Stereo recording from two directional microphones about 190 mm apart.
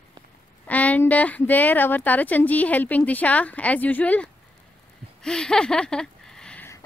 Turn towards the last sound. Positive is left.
turn(degrees=10)  # may be behind; listen again after turning